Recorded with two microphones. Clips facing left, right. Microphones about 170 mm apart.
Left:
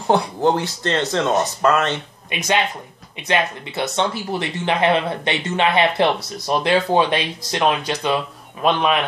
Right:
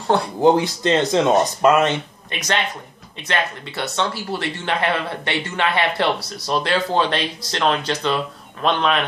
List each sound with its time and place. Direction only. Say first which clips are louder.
0.4 s speech: right 3 dB; 15° right (ahead or behind)
2.3 s speech: left 3 dB; 15° left (ahead or behind)